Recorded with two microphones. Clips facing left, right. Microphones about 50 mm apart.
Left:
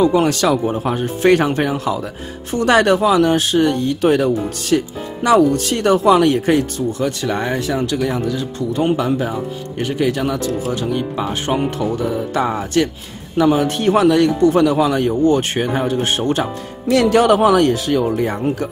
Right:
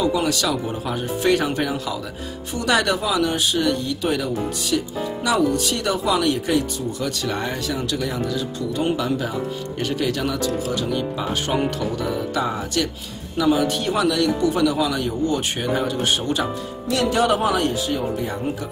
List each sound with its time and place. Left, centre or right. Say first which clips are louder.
0.0 s speech: left 6 dB; left; by 10.4 s centre
10.4 s speech: left 3 dB; left
11.9 s speech: left 4 dB; left
16.9 s speech: left 7 dB; left